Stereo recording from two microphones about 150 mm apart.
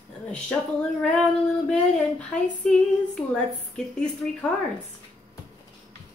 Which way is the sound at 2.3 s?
5° left (ahead or behind).